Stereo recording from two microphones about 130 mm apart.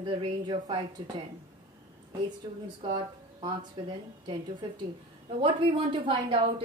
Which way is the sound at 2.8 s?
35° right (ahead or behind).